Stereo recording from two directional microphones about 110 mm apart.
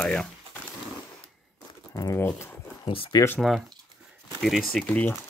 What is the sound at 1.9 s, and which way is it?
Speech, 30° left (ahead or behind).